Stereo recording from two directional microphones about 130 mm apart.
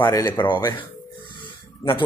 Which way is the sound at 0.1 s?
30° left (ahead or behind).